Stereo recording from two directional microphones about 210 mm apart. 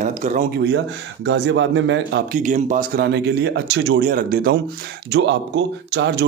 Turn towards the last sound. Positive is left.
turn(degrees=-55)  # may be behind; listen again after turning